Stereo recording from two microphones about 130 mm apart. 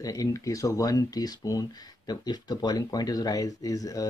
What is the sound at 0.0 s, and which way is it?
Speech, 25° left (ahead or behind).